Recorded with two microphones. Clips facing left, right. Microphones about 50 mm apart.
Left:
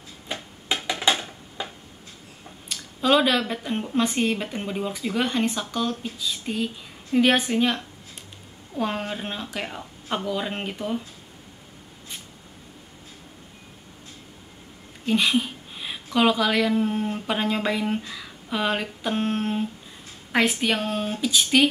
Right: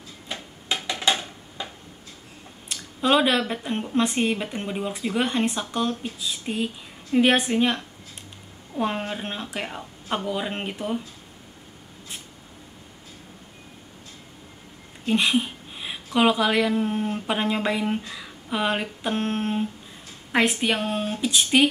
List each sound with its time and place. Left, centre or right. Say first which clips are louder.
0.3 s a sound: left 1 dB; centre
3.0 s a woman's voice: even; centre
15.0 s speech: even; centre